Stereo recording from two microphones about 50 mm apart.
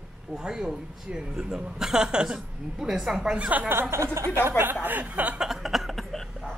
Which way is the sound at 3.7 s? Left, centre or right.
Right.